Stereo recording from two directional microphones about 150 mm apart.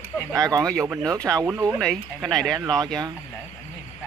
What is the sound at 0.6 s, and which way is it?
Speech, 5° left (ahead or behind).